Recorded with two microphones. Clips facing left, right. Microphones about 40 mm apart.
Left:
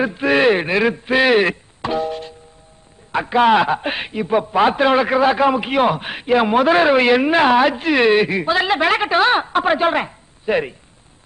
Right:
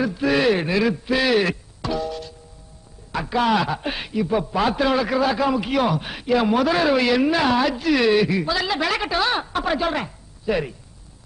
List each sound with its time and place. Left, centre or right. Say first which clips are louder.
0.0 s a man's voice: left 4 dB; left